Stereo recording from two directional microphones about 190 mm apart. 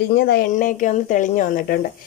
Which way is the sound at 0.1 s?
60° left (ahead or behind).